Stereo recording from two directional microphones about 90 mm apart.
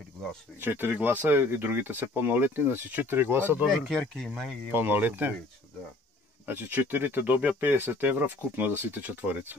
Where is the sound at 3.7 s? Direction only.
Centre (ahead or behind).